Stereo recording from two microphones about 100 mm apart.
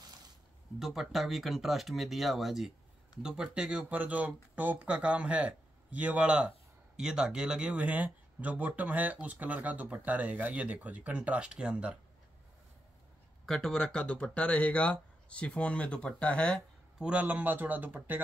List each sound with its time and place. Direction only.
0.7 s speech: 5° right (ahead or behind)
13.5 s speech: 5° left (ahead or behind)
17.0 s speech: 15° right (ahead or behind)